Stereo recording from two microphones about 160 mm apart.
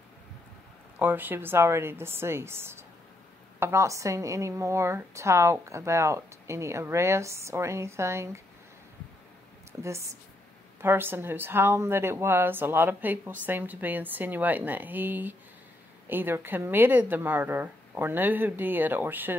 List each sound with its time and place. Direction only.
0.9 s a woman's voice: 10° right (ahead or behind)
9.7 s a woman's voice: 15° right (ahead or behind)